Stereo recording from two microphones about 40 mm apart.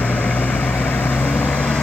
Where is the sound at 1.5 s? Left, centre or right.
Left.